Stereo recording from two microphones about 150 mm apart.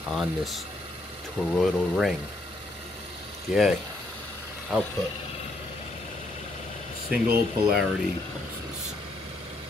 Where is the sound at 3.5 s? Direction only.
5° right (ahead or behind).